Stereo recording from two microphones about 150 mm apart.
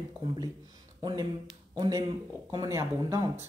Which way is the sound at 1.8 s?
25° right (ahead or behind).